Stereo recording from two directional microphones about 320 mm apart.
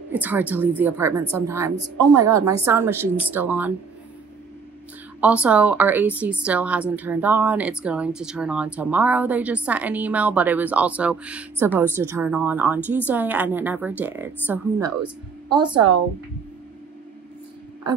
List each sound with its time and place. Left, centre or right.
0.1 s a woman's voice: centre
5.2 s a woman's voice: centre
15.6 s speech: right